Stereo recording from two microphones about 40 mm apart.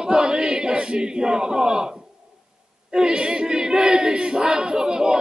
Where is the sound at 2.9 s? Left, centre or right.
Centre.